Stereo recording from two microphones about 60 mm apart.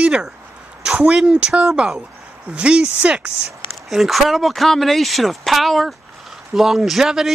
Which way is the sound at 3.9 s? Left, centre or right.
Centre.